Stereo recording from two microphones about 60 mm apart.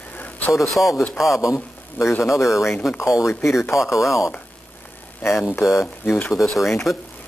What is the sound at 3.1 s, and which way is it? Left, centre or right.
Speech, left.